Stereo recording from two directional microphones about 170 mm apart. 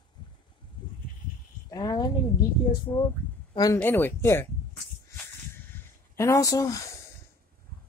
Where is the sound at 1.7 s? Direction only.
20° left (ahead or behind).